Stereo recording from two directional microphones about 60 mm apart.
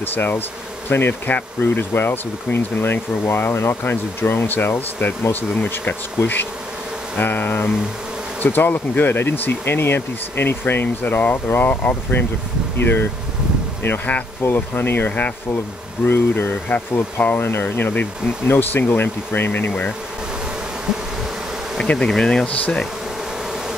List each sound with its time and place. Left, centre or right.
0.0 s speech: left
16.1 s speech: left
16.6 s speech: left
21.7 s bee: centre